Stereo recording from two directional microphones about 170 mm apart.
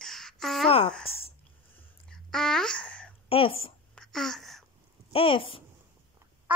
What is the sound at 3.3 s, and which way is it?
Speech, 35° left (ahead or behind).